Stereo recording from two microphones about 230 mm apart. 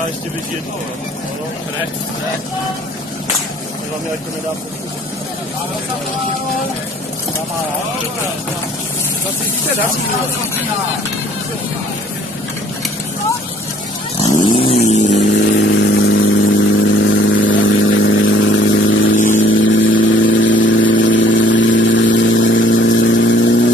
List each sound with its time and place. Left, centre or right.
14.4 s vehicle: left
15.0 s vehicle: left
19.1 s vehicle: left
19.6 s vehicle: left